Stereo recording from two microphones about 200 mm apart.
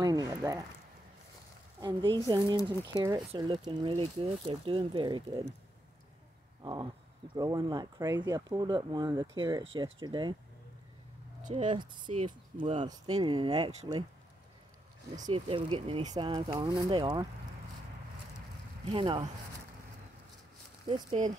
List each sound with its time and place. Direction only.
0.0 s a sound: 20° right (ahead or behind)
1.8 s speech: 20° right (ahead or behind)
6.6 s speech: 20° right (ahead or behind)
11.4 s speech: 35° right (ahead or behind)
15.1 s speech: 25° right (ahead or behind)
18.9 s speech: 25° right (ahead or behind)